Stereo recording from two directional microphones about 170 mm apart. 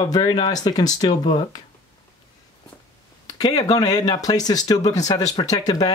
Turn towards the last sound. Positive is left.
turn(degrees=20)  # may be behind; listen again after turning